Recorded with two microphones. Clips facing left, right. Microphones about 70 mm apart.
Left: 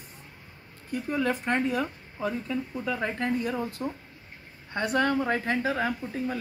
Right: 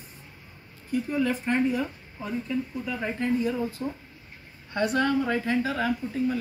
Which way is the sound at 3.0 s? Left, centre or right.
Left.